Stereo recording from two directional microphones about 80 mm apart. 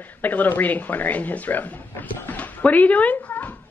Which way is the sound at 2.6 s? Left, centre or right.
Centre.